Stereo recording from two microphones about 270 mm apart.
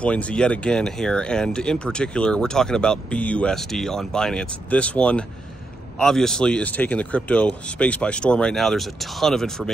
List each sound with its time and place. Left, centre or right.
0.0 s speech: centre